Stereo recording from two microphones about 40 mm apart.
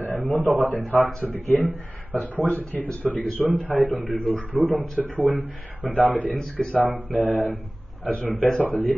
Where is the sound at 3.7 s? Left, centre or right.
Right.